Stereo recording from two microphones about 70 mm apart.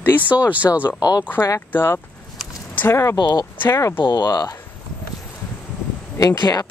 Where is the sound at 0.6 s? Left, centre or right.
Left.